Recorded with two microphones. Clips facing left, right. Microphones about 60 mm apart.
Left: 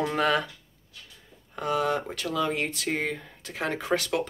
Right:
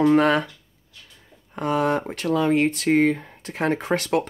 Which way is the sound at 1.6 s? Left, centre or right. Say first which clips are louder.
Right 4 dB; right.